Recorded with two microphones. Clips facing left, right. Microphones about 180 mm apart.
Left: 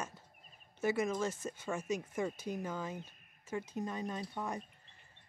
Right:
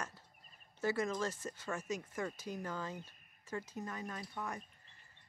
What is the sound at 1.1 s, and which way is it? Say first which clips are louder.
Speech: left 3 dB; 10° left (ahead or behind).